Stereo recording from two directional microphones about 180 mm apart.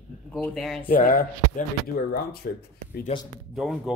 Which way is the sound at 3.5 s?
Centre (ahead or behind).